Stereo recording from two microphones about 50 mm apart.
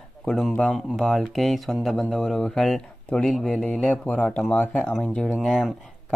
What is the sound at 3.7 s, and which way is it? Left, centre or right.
Speech, left.